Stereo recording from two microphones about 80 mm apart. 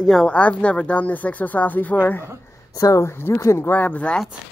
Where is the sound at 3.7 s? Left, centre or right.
Centre.